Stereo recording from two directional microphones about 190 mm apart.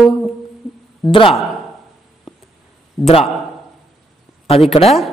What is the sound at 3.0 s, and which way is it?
Speech, 30° left (ahead or behind).